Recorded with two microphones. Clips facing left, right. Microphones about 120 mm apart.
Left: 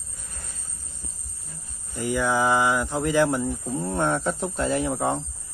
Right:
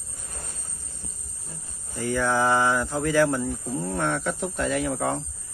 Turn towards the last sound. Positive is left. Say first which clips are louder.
# left 1 dB
turn(degrees=20)  # may be behind; listen again after turning